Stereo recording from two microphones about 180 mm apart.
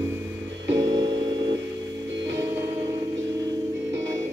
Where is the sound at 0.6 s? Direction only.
20° right (ahead or behind).